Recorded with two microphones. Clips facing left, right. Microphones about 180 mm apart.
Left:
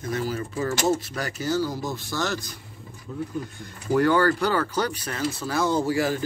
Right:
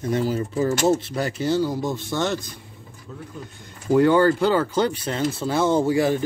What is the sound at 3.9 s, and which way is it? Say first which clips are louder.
Speech: right 4 dB; 20° right (ahead or behind).